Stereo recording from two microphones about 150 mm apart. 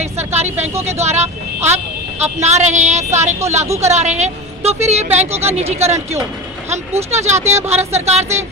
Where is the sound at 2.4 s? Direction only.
50° right (ahead or behind).